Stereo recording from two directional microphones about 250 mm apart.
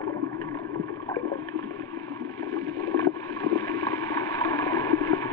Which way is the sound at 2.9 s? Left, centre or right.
Centre.